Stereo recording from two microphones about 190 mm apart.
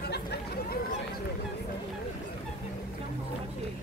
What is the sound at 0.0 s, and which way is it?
Chatter, 55° left (ahead or behind).